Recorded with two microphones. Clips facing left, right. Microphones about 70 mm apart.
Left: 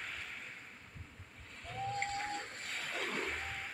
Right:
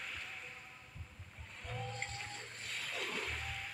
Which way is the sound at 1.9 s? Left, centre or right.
Left.